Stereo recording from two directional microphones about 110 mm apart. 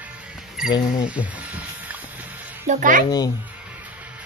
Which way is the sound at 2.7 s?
90° right.